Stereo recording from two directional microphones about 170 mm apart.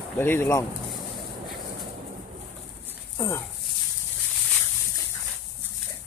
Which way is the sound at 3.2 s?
15° left (ahead or behind).